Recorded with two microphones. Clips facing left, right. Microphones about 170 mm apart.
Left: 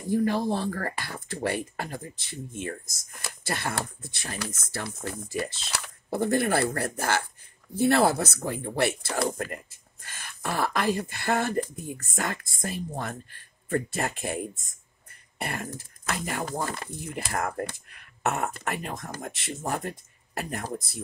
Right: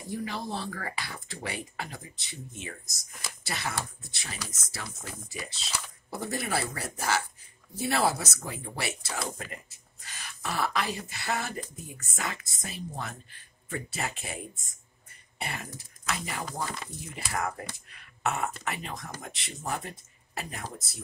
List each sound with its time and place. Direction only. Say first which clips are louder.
0.1 s speech: left 10 dB; 55° left (ahead or behind)